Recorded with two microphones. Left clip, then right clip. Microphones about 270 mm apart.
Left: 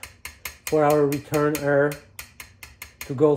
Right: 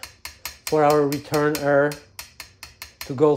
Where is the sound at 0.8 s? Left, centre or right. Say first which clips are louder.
Right 1 dB; right.